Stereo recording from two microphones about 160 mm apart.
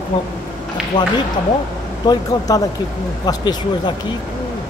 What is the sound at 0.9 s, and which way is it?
A man's voice, 25° left (ahead or behind).